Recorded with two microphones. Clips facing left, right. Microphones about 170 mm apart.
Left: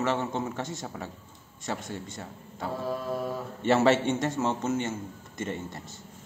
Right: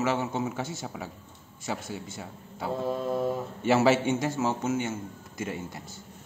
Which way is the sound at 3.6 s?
Centre (ahead or behind).